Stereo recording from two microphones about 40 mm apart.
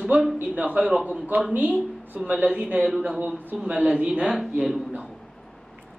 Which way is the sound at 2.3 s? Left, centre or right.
Right.